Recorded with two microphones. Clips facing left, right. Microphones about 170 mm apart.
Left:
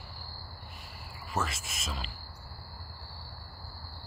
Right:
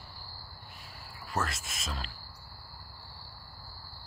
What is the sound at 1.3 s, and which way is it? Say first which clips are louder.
Speech: even; centre (ahead or behind).